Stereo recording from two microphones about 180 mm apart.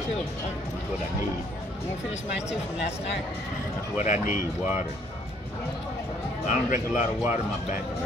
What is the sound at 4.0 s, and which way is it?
Speech, 45° left (ahead or behind).